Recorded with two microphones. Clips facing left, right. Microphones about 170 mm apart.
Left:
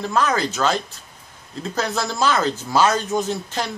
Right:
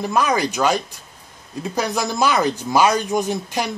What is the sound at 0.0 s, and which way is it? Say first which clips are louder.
Speech: right 1 dB; 15° right (ahead or behind).